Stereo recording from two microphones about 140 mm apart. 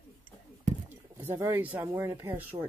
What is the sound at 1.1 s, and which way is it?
Speech, 20° right (ahead or behind).